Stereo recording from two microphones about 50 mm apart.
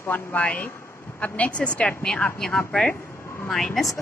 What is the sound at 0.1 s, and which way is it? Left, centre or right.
A woman's voice, left.